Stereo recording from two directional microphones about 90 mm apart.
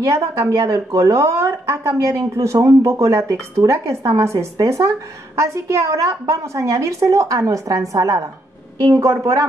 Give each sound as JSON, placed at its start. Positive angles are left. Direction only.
{"t": 0.1, "sound": "speech", "side_deg": -35}